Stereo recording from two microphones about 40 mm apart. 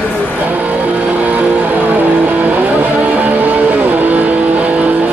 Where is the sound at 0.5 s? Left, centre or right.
Right.